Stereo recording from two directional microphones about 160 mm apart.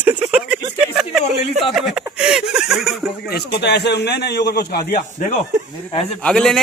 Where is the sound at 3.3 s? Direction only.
90° left.